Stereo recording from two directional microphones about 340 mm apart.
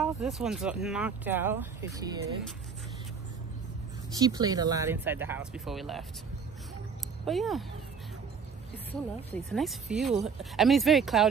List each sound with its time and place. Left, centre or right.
0.0 s speech: centre
4.1 s speech: centre
7.2 s speech: centre
9.3 s speech: centre